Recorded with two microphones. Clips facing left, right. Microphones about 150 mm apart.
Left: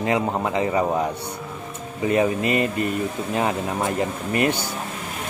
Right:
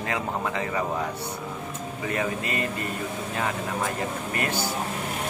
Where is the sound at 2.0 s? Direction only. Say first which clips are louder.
Left 9 dB; 20° left (ahead or behind).